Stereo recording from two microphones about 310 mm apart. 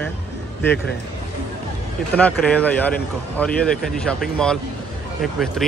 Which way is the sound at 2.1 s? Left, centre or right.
Centre.